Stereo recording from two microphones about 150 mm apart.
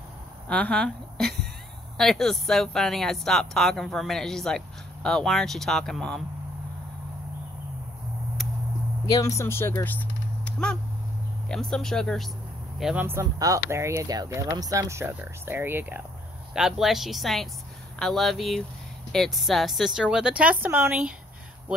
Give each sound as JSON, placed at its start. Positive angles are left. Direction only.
{"t": 0.5, "sound": "a sound", "side_deg": 5}
{"t": 2.0, "sound": "speech", "side_deg": 0}
{"t": 9.1, "sound": "speech", "side_deg": 20}
{"t": 10.4, "sound": "a sound", "side_deg": 5}
{"t": 11.4, "sound": "speech", "side_deg": 5}
{"t": 13.0, "sound": "speech", "side_deg": -20}
{"t": 16.5, "sound": "speech", "side_deg": -5}